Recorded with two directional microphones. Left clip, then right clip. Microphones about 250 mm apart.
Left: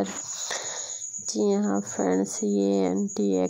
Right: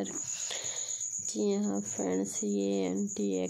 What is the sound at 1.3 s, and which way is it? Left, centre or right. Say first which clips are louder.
Speech: left 8 dB; centre.